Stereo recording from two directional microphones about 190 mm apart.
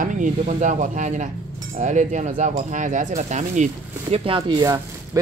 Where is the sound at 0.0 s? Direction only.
45° right (ahead or behind).